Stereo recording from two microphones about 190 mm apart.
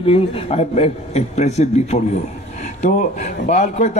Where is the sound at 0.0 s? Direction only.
30° left (ahead or behind).